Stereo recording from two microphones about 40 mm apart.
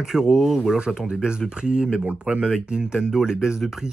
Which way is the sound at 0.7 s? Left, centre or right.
Right.